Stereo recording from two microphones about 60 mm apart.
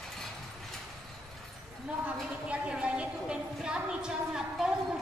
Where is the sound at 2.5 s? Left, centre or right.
Centre.